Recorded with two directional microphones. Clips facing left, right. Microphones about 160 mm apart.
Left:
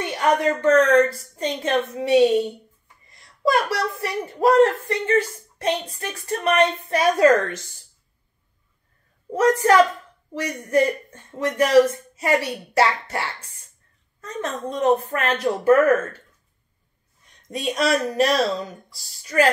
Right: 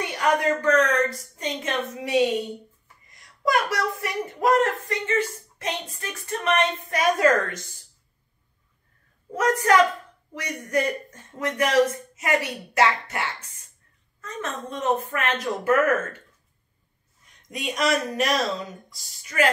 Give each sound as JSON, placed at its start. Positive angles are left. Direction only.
{"t": 0.2, "sound": "speech", "side_deg": 25}
{"t": 9.3, "sound": "speech", "side_deg": 30}
{"t": 17.5, "sound": "speech", "side_deg": 35}